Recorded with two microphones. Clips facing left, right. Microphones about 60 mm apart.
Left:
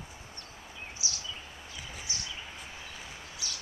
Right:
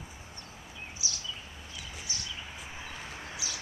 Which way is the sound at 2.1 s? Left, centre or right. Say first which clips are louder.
Even; left.